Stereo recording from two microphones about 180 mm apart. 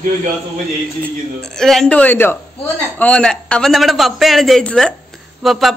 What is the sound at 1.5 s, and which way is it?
Speech, centre (ahead or behind).